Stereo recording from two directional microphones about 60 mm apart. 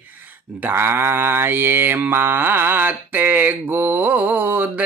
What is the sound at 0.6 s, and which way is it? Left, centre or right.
Mantra, right.